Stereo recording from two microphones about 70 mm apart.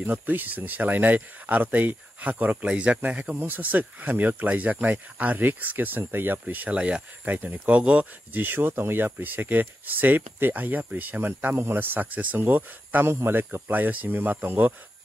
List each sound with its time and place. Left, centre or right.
0.0 s speech: right